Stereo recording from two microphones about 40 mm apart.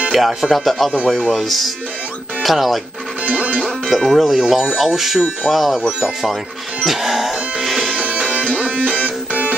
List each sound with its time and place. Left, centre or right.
0.1 s speech: centre
3.3 s music: right
3.8 s speech: centre
6.8 s music: centre
8.0 s music: right